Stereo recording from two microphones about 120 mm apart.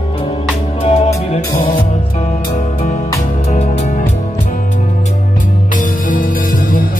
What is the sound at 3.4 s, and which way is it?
Music, 70° left (ahead or behind).